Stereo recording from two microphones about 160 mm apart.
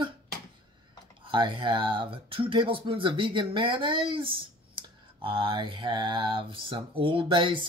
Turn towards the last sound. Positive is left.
turn(degrees=-30)  # may be behind; listen again after turning